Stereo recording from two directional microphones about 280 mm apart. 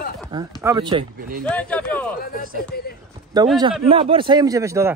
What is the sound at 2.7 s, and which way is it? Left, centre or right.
Speech, left.